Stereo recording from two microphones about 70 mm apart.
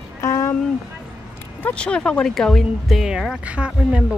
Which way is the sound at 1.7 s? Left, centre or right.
Centre.